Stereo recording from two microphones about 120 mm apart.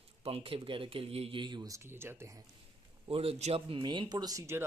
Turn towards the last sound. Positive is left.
turn(degrees=-25)  # may be behind; listen again after turning